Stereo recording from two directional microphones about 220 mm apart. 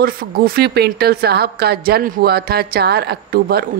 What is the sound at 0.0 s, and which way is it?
A woman's voice, 45° right (ahead or behind).